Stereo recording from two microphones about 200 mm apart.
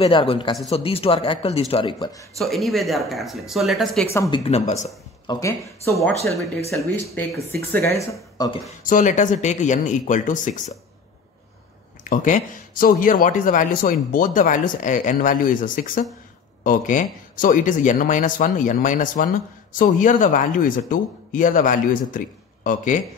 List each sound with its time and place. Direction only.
0.0 s speech: 25° left (ahead or behind)
2.3 s speech: centre (ahead or behind)
4.1 s speech: 15° left (ahead or behind)
4.4 s speech: 30° left (ahead or behind)
5.3 s speech: 15° left (ahead or behind)
6.7 s speech: 15° left (ahead or behind)
8.8 s speech: 40° left (ahead or behind)
12.0 s speech: 40° left (ahead or behind)